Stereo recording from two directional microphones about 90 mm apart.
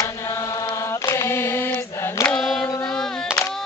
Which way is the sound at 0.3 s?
40° left (ahead or behind).